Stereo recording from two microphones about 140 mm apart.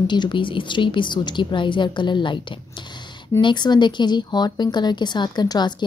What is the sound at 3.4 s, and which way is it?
Speech, 30° left (ahead or behind).